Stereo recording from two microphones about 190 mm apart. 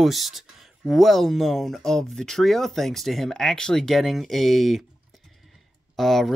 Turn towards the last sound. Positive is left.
turn(degrees=0)  # may be behind; listen again after turning